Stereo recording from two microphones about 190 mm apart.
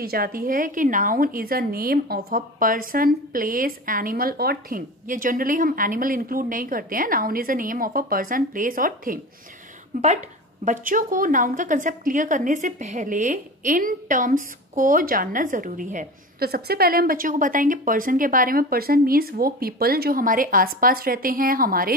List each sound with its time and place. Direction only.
0.0 s a woman's voice: 50° right (ahead or behind)